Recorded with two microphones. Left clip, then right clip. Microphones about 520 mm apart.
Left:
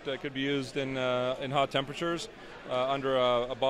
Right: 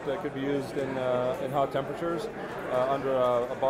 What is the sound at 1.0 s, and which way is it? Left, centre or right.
Speech, left.